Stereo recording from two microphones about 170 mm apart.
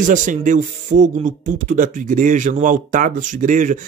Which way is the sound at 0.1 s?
50° right (ahead or behind).